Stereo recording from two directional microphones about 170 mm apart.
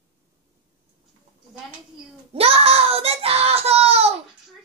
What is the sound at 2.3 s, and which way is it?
Child singing, 35° right (ahead or behind).